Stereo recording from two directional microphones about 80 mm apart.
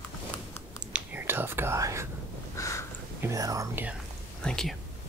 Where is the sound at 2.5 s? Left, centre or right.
Left.